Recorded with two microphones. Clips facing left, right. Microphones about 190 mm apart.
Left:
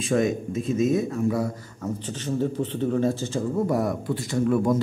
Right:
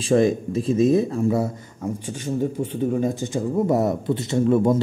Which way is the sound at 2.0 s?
10° right (ahead or behind).